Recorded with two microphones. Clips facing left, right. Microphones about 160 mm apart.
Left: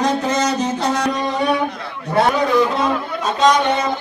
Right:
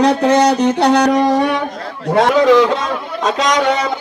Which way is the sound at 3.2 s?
90° right.